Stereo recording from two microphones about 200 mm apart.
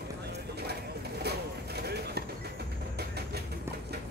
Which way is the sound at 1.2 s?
55° right (ahead or behind).